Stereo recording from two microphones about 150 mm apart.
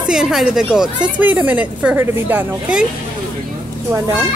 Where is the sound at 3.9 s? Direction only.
15° right (ahead or behind).